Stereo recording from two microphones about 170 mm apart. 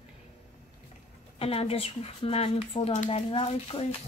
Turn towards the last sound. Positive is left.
turn(degrees=35)  # may be behind; listen again after turning